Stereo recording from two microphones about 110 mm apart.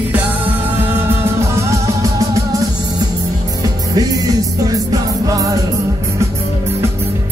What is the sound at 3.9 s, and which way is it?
Music, 35° right (ahead or behind).